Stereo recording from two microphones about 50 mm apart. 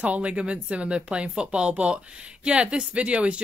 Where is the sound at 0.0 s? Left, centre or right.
Right.